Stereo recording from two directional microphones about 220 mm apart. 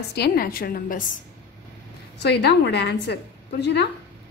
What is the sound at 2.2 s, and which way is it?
A woman's voice, 50° left (ahead or behind).